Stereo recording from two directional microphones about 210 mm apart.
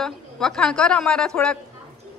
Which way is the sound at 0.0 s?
Centre (ahead or behind).